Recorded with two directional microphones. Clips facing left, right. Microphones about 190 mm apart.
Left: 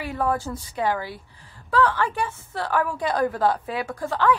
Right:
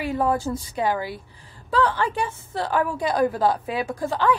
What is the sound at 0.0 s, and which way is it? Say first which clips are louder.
A woman's voice: right 3 dB; 20° right (ahead or behind).